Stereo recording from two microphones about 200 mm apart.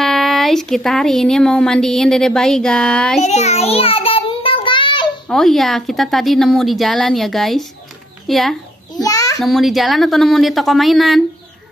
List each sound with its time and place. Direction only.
0.0 s speech: centre (ahead or behind)
3.2 s child singing: 35° left (ahead or behind)
5.3 s speech: centre (ahead or behind)
9.0 s a sound: 15° left (ahead or behind)
9.4 s speech: centre (ahead or behind)